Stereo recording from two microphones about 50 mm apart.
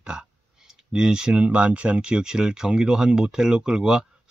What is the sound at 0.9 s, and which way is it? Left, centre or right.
Speech, centre.